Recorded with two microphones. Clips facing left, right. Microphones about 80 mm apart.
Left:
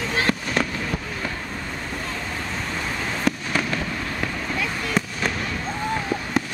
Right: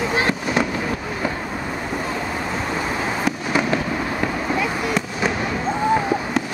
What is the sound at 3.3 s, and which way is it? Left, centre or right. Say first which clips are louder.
Fireworks: right 2 dB; centre.